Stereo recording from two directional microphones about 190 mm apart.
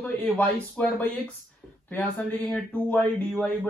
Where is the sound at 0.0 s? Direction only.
5° left (ahead or behind).